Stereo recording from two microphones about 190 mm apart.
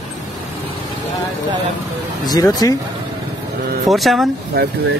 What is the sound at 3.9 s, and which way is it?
Speech, centre (ahead or behind).